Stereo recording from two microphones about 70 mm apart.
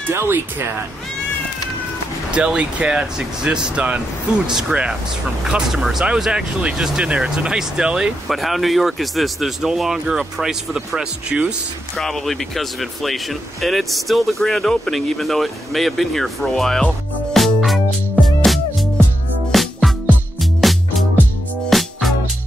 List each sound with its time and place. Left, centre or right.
0.1 s speech: right
2.3 s speech: centre
4.5 s speech: centre
8.3 s speech: centre
12.0 s speech: centre
18.2 s music: centre